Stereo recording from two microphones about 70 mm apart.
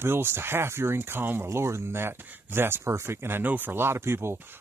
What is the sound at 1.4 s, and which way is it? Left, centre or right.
Speech, right.